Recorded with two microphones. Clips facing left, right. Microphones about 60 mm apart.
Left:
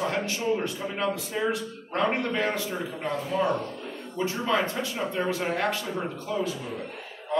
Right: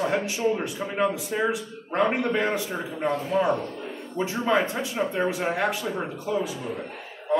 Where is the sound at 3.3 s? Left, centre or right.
Right.